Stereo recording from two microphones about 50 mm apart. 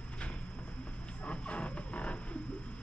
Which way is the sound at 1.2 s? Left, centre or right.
Left.